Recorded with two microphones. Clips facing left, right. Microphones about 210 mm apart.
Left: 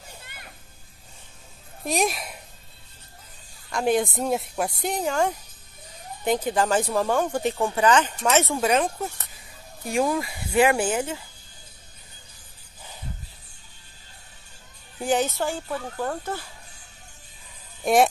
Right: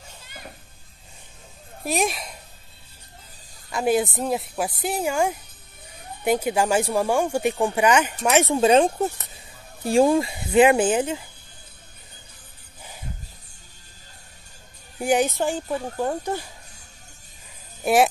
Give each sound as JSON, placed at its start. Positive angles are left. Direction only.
{"t": 1.9, "sound": "speech", "side_deg": 0}
{"t": 3.7, "sound": "speech", "side_deg": -5}
{"t": 8.5, "sound": "speech", "side_deg": -30}
{"t": 15.0, "sound": "speech", "side_deg": -15}